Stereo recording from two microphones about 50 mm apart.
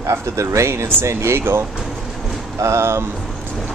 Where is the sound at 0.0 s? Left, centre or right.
Right.